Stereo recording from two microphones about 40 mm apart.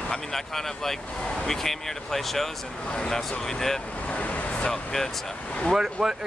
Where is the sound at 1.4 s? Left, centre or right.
Centre.